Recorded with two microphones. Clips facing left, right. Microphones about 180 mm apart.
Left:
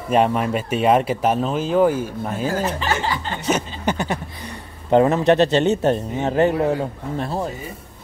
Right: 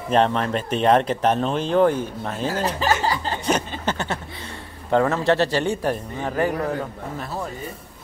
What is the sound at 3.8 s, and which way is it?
Speech, 15° left (ahead or behind).